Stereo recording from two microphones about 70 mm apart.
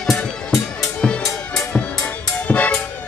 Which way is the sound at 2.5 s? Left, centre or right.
Left.